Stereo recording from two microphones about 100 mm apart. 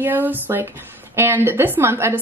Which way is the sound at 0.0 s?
20° right (ahead or behind).